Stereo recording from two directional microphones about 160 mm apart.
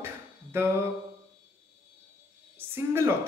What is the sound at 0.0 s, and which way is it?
Music, 15° right (ahead or behind).